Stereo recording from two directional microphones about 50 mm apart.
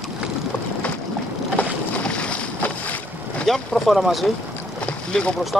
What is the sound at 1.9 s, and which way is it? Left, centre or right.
Boat, left.